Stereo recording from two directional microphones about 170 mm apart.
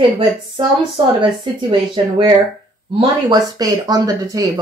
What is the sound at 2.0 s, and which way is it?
Speech, 30° right (ahead or behind).